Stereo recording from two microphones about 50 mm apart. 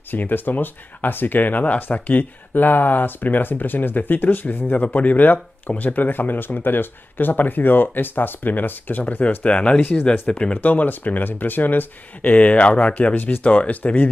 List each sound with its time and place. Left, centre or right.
0.1 s speech: left